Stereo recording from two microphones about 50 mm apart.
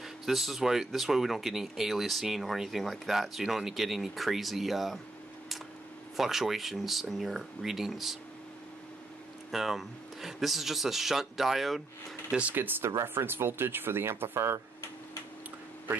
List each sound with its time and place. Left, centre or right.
0.0 s speech: centre
6.1 s speech: centre
9.5 s speech: centre
12.3 s speech: right
12.5 s speech: right